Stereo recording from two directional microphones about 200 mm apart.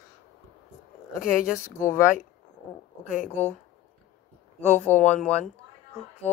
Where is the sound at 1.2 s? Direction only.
45° left (ahead or behind).